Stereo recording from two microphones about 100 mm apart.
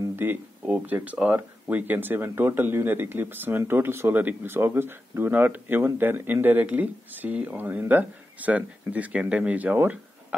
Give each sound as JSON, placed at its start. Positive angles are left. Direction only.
{"t": 0.1, "sound": "speech", "side_deg": -20}